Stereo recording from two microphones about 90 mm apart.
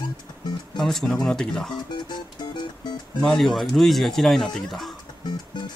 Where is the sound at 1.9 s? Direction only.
55° left (ahead or behind).